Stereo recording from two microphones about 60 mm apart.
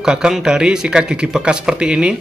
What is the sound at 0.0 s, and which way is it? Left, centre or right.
Speech, centre.